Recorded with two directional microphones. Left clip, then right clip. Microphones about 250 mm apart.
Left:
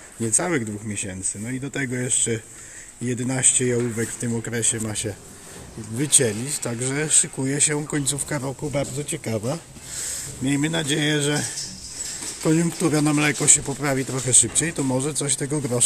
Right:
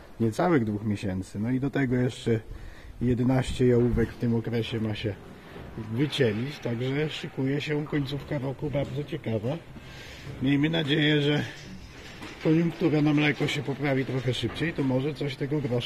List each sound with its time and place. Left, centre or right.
0.3 s speech: centre; by 9.6 s left
10.4 s speech: centre
12.4 s speech: centre